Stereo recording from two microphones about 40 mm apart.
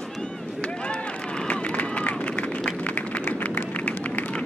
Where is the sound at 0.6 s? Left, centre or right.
Left.